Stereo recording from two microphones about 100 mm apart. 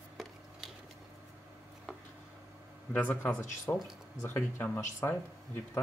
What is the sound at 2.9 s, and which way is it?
Speech, 15° left (ahead or behind).